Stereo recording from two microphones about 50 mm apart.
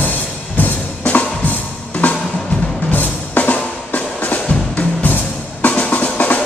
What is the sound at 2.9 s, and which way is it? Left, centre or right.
Drum, left.